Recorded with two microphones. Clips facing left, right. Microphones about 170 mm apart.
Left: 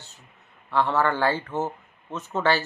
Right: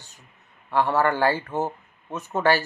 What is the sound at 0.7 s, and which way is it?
Speech, 10° right (ahead or behind).